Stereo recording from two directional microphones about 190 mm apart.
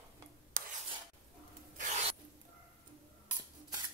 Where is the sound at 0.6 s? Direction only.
50° right (ahead or behind).